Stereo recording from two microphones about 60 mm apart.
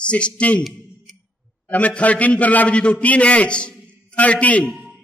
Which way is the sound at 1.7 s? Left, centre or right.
Left.